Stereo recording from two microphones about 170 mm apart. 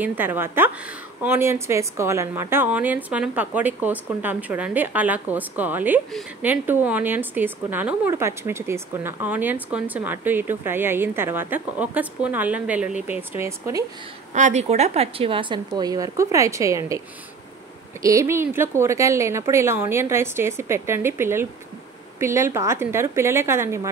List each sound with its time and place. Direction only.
0.0 s a woman's voice: 10° right (ahead or behind)
14.3 s speech: 45° right (ahead or behind); by 17.0 s 20° right (ahead or behind)
18.0 s a woman's voice: 15° right (ahead or behind)